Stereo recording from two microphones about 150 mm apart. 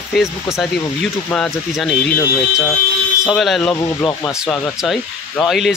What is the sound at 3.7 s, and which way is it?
Speech, 20° left (ahead or behind).